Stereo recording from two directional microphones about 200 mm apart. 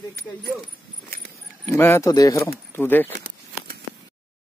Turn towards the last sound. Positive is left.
turn(degrees=10)  # may be behind; listen again after turning